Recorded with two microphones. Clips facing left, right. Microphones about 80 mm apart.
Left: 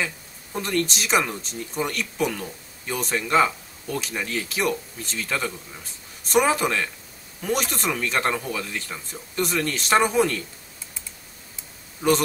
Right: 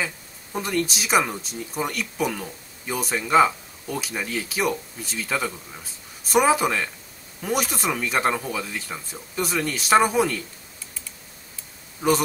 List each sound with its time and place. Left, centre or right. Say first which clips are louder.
0.0 s speech: even; centre
12.0 s speech: even; centre